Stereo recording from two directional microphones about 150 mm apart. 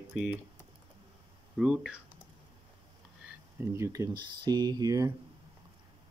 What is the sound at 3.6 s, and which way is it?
Speech, 20° right (ahead or behind).